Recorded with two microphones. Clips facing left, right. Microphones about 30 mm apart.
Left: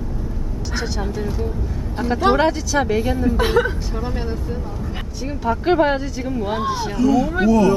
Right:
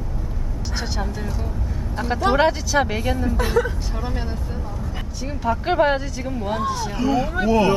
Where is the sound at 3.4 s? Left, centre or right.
Left.